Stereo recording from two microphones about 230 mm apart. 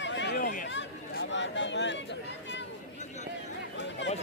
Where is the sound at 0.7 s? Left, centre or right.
Left.